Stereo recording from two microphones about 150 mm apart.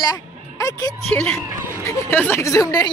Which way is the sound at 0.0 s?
25° left (ahead or behind).